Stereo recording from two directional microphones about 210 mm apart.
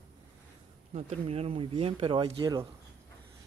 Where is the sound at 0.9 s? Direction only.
30° right (ahead or behind).